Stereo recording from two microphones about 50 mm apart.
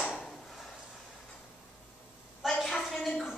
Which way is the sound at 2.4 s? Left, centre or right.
Centre.